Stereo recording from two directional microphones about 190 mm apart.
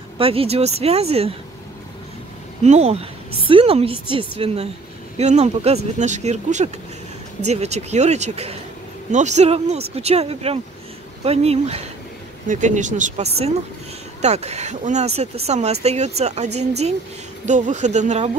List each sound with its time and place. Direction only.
0.2 s a woman's voice: 30° right (ahead or behind)
2.6 s a woman's voice: 35° right (ahead or behind)